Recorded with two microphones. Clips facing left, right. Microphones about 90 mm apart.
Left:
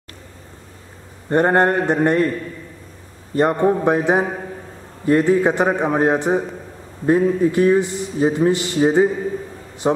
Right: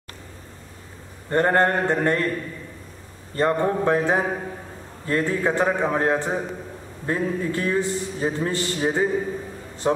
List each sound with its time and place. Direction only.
1.3 s a man's voice: 20° left (ahead or behind)
3.3 s a man's voice: 20° left (ahead or behind)